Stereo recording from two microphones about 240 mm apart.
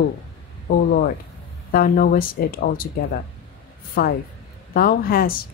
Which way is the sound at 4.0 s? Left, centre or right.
Left.